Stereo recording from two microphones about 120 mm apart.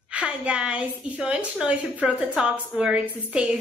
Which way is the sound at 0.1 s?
10° right (ahead or behind).